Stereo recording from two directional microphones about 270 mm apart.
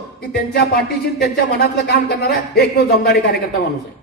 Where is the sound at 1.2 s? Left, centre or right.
Left.